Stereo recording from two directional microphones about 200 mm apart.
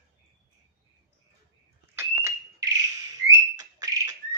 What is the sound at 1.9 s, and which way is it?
Whistle, 15° right (ahead or behind).